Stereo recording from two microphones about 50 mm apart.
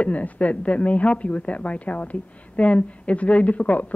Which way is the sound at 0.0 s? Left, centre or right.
Left.